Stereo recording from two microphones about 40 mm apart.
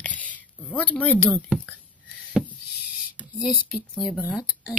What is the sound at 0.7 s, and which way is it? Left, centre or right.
Speech, left.